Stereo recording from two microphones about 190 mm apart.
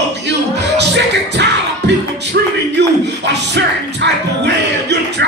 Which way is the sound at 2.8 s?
60° right (ahead or behind).